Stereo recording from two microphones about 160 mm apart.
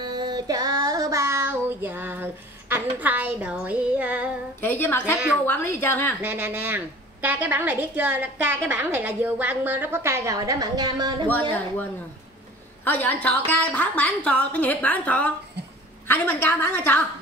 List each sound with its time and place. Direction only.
0.0 s child singing: 25° right (ahead or behind); by 4.3 s 10° right (ahead or behind)
4.6 s a woman's voice: 15° left (ahead or behind)
6.2 s a woman's voice: 10° right (ahead or behind); by 11.2 s 25° right (ahead or behind)
12.8 s a woman's voice: 10° left (ahead or behind)